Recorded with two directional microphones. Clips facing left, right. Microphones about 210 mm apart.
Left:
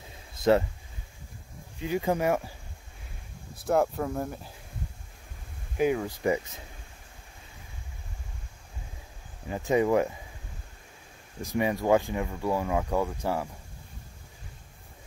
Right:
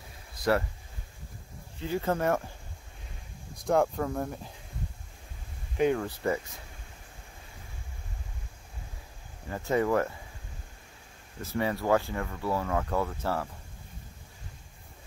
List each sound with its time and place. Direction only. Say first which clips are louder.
0.3 s a sound: left 4 dB; 20° left (ahead or behind)
1.8 s speech: left 2 dB; 15° left (ahead or behind)
3.5 s speech: even; 5° left (ahead or behind)
5.8 s speech: even; 5° left (ahead or behind)
6.2 s speech: left 5 dB; 15° left (ahead or behind)
9.5 s speech: left 3 dB; 15° left (ahead or behind)
11.4 s speech: left 3 dB; 15° left (ahead or behind)